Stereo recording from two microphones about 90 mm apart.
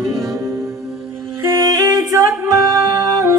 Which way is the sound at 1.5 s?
30° right (ahead or behind).